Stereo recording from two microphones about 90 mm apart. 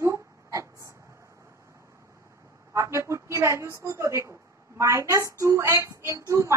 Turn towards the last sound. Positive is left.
turn(degrees=-35)  # may be behind; listen again after turning